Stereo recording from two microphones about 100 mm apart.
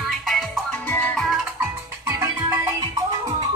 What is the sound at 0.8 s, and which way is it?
Music, 15° left (ahead or behind).